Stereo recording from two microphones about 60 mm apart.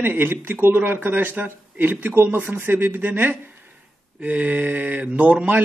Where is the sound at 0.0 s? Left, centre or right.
Right.